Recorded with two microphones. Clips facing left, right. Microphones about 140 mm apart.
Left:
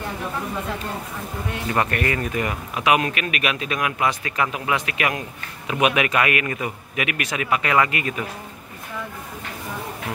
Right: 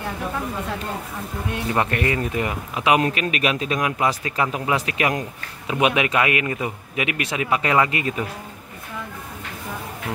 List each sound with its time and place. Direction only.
1.7 s speech: 20° right (ahead or behind)